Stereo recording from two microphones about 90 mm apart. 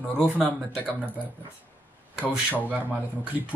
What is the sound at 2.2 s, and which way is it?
Speech, 15° right (ahead or behind).